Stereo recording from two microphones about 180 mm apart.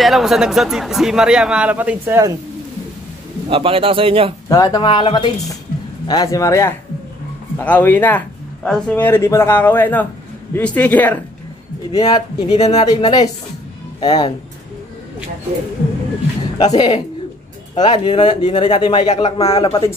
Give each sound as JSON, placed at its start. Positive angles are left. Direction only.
{"t": 0.0, "sound": "a man's voice", "side_deg": 0}
{"t": 3.4, "sound": "speech", "side_deg": -30}
{"t": 4.5, "sound": "a man's voice", "side_deg": 20}
{"t": 11.9, "sound": "speech", "side_deg": 25}
{"t": 16.5, "sound": "a man's voice", "side_deg": 25}